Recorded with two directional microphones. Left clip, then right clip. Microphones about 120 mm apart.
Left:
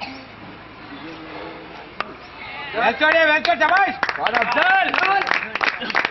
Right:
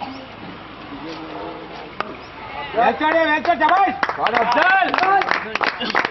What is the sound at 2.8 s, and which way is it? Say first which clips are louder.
Speech: left 1 dB; 25° left (ahead or behind).